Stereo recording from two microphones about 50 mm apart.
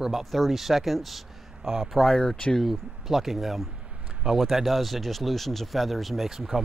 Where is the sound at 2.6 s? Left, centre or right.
Centre.